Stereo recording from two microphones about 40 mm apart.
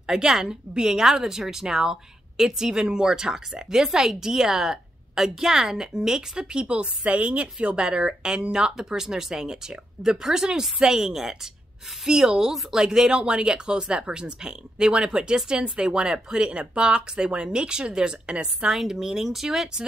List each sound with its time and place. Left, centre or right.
0.0 s a woman's voice: centre
18.7 s a woman's voice: centre